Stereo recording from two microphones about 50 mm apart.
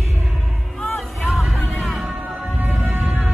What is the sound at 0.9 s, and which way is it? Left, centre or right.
Music, centre.